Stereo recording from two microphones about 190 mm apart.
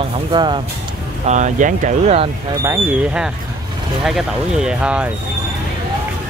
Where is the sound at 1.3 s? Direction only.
40° right (ahead or behind).